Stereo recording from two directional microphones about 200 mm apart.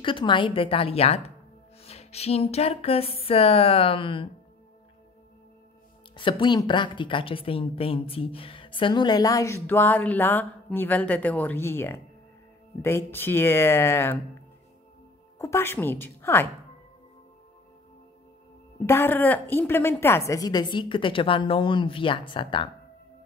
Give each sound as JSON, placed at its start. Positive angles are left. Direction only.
{"t": 0.0, "sound": "speech", "side_deg": 25}
{"t": 6.1, "sound": "speech", "side_deg": 25}
{"t": 15.3, "sound": "speech", "side_deg": 15}
{"t": 18.9, "sound": "speech", "side_deg": 10}